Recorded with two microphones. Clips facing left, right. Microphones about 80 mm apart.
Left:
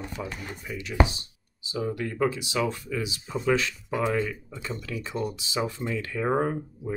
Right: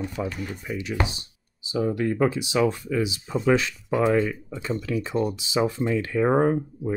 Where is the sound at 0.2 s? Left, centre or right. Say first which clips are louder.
Right 5 dB; right.